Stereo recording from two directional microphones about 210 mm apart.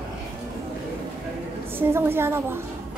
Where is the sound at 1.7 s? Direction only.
10° right (ahead or behind).